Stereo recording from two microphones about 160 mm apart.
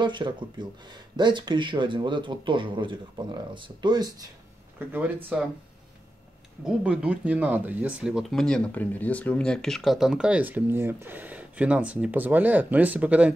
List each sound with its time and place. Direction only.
0.0 s speech: 30° right (ahead or behind)
4.7 s speech: 10° right (ahead or behind)
6.6 s speech: 5° right (ahead or behind)